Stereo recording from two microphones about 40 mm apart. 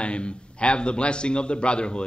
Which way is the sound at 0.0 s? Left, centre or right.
Left.